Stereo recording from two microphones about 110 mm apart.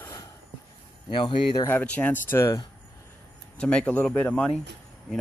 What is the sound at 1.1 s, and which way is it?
Speech, 50° left (ahead or behind).